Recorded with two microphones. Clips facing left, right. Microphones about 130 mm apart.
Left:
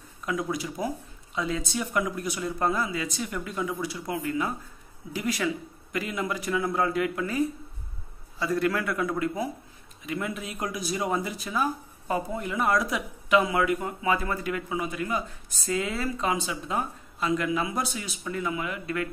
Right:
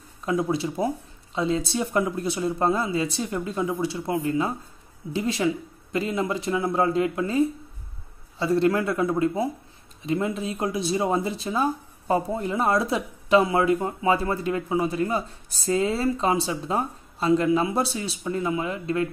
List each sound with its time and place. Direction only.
0.2 s speech: 30° right (ahead or behind)